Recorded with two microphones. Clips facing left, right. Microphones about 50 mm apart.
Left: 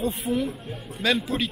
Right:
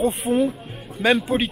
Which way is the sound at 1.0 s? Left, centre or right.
Right.